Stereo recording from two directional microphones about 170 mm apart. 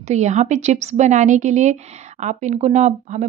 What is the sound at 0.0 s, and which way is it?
A woman's voice, 45° right (ahead or behind).